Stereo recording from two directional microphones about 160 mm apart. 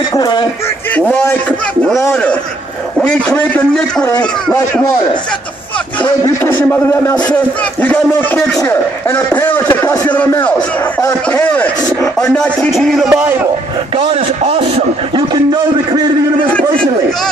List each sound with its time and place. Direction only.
0.1 s speech: 25° left (ahead or behind)
2.0 s speech: 15° left (ahead or behind)
3.0 s speech: 5° left (ahead or behind)
6.2 s speech: 15° left (ahead or behind)
12.2 s a sound: 5° left (ahead or behind)
13.1 s a man's voice: 15° right (ahead or behind)
13.9 s a man's voice: 40° right (ahead or behind)